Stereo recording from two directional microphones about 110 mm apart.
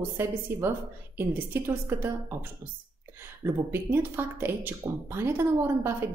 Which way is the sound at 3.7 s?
20° right (ahead or behind).